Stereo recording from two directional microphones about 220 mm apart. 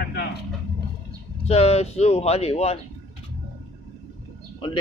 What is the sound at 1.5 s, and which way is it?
Speech, 25° left (ahead or behind).